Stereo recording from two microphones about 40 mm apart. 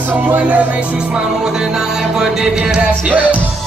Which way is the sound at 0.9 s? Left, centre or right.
Centre.